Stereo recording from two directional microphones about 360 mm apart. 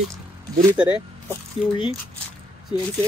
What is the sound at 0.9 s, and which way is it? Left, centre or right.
Speech, centre.